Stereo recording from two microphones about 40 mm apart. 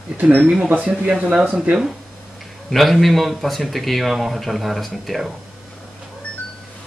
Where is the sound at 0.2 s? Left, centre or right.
Right.